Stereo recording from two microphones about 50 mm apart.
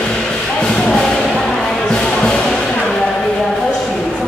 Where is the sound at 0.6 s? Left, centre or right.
Centre.